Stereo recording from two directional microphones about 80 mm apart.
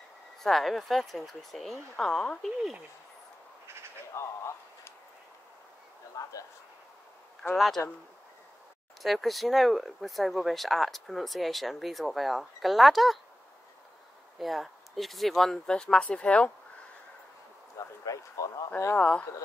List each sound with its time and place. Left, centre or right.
0.4 s speech: centre
4.1 s a sound: left
6.2 s a sound: left
7.5 s speech: centre
9.0 s speech: centre
14.4 s speech: centre
17.7 s speech: left
18.9 s speech: centre